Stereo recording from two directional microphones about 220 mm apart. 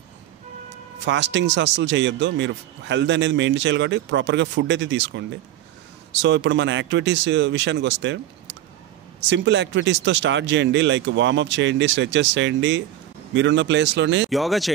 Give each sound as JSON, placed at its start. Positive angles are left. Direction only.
{"t": 1.0, "sound": "speech", "side_deg": -55}
{"t": 6.2, "sound": "speech", "side_deg": -55}
{"t": 14.3, "sound": "speech", "side_deg": 0}